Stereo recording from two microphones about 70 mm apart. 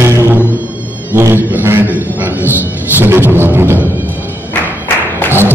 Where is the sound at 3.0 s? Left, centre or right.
Right.